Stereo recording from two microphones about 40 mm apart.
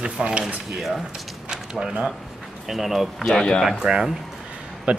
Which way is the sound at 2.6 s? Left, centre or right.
Centre.